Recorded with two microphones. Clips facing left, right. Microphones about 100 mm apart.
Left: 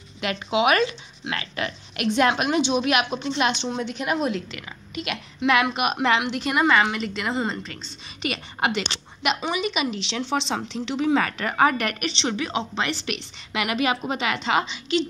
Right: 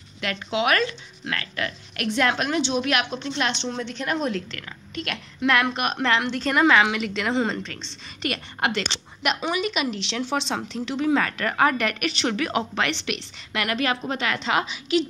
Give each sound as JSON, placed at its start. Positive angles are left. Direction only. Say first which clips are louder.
{"t": 0.2, "sound": "speech", "louder": "left 3 dB", "side_deg": 15}
{"t": 12.3, "sound": "a woman's voice", "louder": "right 2 dB", "side_deg": 20}
{"t": 12.9, "sound": "speech", "louder": "even", "side_deg": 0}